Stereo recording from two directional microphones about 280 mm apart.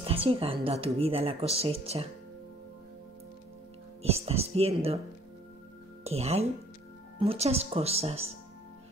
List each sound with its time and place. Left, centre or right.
0.0 s a woman's voice: centre
4.0 s a woman's voice: right
6.0 s a woman's voice: right